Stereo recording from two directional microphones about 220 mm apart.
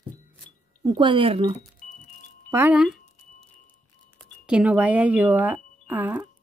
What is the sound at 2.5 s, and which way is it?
Speech, 10° right (ahead or behind).